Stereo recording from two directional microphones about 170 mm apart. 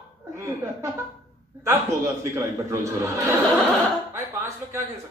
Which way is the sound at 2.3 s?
20° right (ahead or behind).